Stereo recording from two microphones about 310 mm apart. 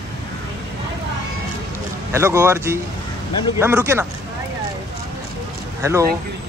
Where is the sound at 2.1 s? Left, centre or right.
Centre.